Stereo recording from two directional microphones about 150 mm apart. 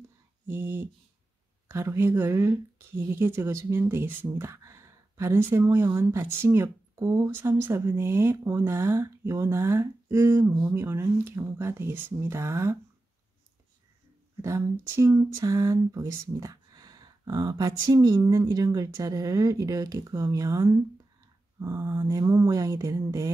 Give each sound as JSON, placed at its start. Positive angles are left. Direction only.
{"t": 0.5, "sound": "speech", "side_deg": -15}
{"t": 14.3, "sound": "speech", "side_deg": -20}